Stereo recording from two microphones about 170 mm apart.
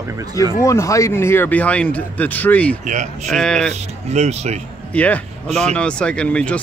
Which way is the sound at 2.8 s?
45° right (ahead or behind).